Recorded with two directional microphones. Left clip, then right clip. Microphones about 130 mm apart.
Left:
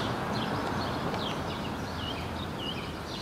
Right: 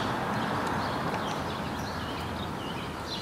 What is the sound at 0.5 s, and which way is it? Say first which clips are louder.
Clip-clop: right 2 dB; 40° right (ahead or behind).